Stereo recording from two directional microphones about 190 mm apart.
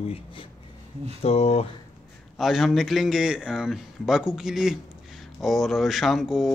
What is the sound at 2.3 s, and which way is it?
Speech, centre (ahead or behind).